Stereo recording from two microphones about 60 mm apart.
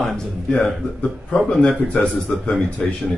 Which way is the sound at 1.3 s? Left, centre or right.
Centre.